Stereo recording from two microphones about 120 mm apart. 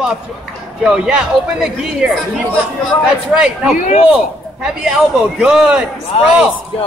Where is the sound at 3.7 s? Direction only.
90° left.